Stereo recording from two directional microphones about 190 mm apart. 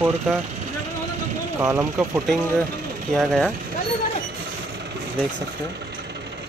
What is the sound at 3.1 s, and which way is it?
Speech, centre (ahead or behind).